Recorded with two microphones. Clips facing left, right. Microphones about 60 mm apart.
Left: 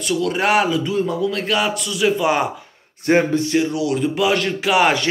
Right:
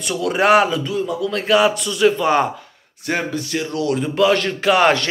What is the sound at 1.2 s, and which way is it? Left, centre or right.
Speech, centre.